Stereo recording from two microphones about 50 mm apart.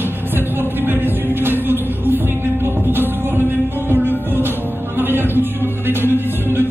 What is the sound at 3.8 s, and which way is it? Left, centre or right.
Music, right.